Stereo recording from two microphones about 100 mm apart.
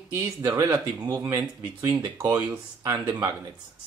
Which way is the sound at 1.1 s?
25° right (ahead or behind).